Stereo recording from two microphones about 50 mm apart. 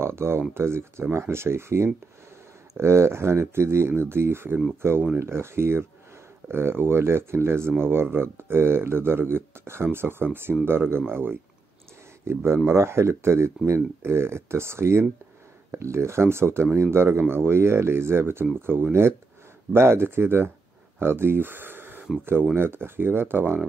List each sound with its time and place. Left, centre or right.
0.0 s speech: right
14.0 s speech: right